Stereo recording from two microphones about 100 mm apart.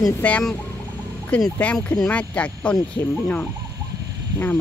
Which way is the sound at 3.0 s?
25° left (ahead or behind).